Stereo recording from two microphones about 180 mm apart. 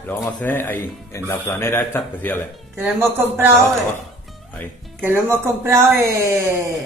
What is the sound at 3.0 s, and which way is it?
Speech, 15° right (ahead or behind).